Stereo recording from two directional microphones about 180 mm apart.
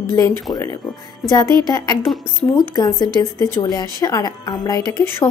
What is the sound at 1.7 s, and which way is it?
A woman's voice, 20° left (ahead or behind).